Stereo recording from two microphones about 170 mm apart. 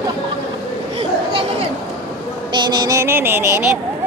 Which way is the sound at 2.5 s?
25° right (ahead or behind).